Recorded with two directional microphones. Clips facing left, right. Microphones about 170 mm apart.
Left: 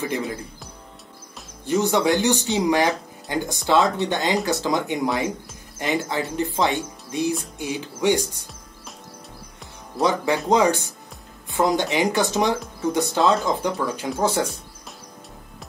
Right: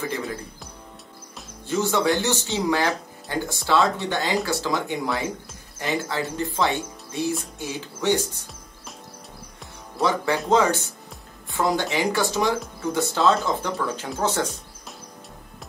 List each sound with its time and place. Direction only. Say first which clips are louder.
1.8 s speech: left 2 dB; 15° left (ahead or behind)
10.0 s speech: left 2 dB; 15° left (ahead or behind)